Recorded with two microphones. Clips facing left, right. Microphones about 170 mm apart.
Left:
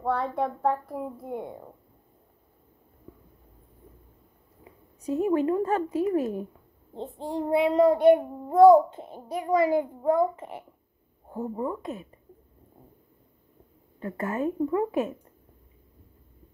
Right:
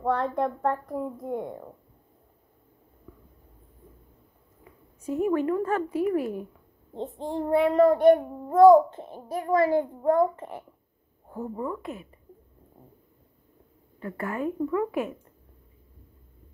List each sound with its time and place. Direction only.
0.0 s speech: 5° left (ahead or behind)
4.6 s speech: 20° left (ahead or behind)
7.0 s child singing: 10° left (ahead or behind)
11.2 s speech: 20° left (ahead or behind)
13.9 s speech: 20° left (ahead or behind)